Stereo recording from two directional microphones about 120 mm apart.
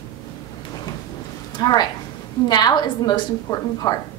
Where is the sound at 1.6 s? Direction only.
35° left (ahead or behind).